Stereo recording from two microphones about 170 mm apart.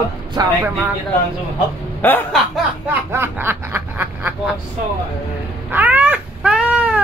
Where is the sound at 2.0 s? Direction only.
10° left (ahead or behind).